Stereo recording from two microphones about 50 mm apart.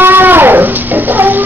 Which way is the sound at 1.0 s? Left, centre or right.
Right.